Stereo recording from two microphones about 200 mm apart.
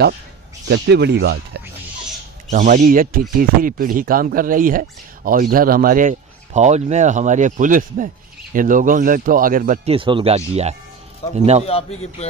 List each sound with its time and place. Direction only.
0.7 s speech: 55° right (ahead or behind)
2.5 s speech: 40° right (ahead or behind)
9.8 s speech: 25° right (ahead or behind)
11.6 s a man's voice: 30° left (ahead or behind)